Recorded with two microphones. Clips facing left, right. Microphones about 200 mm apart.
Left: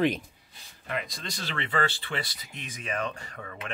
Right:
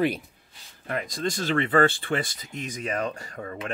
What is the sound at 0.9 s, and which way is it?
Speech, 45° right (ahead or behind).